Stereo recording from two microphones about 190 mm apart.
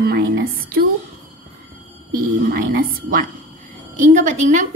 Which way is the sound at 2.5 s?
50° right (ahead or behind).